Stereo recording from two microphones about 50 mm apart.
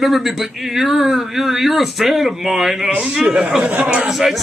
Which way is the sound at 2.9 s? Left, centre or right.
Centre.